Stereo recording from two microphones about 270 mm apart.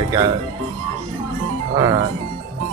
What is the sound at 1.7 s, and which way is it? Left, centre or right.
Speech, centre.